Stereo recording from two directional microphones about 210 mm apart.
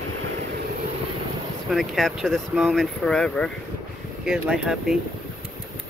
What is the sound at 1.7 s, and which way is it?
Speech, centre (ahead or behind).